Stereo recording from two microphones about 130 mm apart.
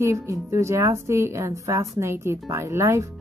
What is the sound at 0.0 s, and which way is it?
Speech, 20° right (ahead or behind).